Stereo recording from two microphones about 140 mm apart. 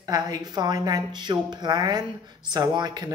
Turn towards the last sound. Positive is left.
turn(degrees=-30)  # may be behind; listen again after turning